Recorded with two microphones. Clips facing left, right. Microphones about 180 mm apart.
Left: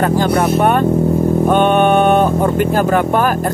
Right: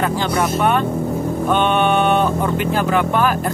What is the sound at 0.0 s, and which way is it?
Speech, 45° left (ahead or behind).